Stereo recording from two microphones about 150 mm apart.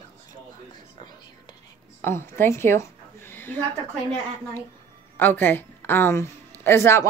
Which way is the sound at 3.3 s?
15° left (ahead or behind).